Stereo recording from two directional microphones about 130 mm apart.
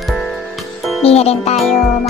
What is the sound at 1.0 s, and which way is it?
Music, 50° left (ahead or behind).